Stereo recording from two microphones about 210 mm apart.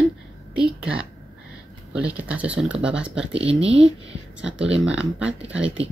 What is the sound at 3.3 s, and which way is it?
Speech, 25° right (ahead or behind).